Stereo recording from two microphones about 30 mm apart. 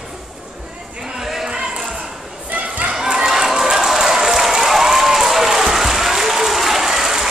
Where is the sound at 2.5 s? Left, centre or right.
Right.